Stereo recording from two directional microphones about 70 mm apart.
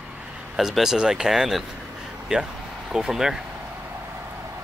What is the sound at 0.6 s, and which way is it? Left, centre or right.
Speech, centre.